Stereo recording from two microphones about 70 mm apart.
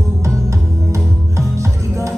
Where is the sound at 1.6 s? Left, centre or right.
Right.